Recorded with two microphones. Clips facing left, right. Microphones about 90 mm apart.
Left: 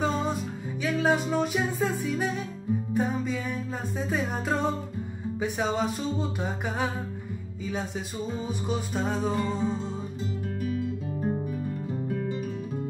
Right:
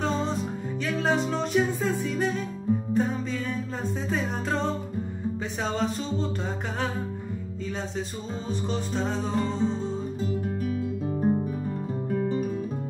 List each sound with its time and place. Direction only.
0.0 s music: 5° left (ahead or behind)
8.6 s music: 10° left (ahead or behind)
10.7 s guitar: 25° right (ahead or behind)